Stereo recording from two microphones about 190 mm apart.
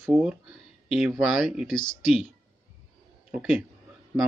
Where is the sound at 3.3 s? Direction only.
5° right (ahead or behind).